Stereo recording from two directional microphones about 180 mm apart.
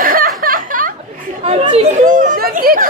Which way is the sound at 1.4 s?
35° right (ahead or behind).